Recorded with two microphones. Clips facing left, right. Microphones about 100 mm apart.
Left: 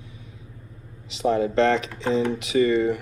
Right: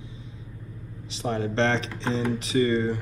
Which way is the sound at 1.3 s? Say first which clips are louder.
Left 4 dB; 30° right (ahead or behind).